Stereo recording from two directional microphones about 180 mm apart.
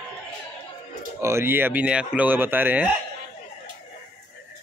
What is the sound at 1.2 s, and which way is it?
Speech, 15° right (ahead or behind).